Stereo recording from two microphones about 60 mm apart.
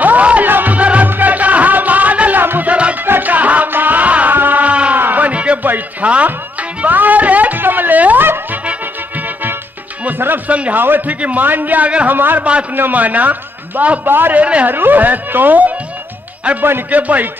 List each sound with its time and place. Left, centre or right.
0.0 s music: right
5.0 s a sound: right
6.8 s music: right
10.0 s speech: right
10.5 s a man's voice: right
10.8 s a man's voice: right
12.2 s a man's voice: right
14.4 s a man's voice: right
14.7 s a man's voice: right